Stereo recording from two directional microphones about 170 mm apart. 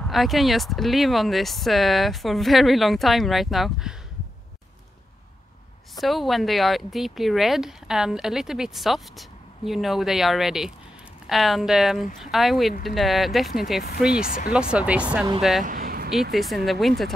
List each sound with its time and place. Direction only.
0.0 s speech: centre (ahead or behind)
5.9 s speech: centre (ahead or behind)
14.2 s speech: 55° left (ahead or behind)
14.5 s speech: 5° right (ahead or behind)
15.6 s a sound: 55° right (ahead or behind)
16.3 s speech: centre (ahead or behind)